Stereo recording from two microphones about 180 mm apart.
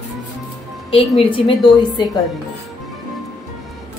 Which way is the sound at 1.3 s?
25° left (ahead or behind).